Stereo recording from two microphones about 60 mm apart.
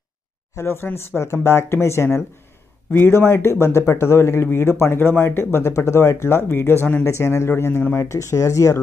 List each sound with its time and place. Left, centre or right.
0.6 s speech: left
5.0 s speech: left
7.1 s speech: left
8.0 s speech: left